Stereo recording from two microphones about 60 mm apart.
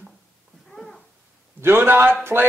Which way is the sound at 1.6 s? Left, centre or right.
Right.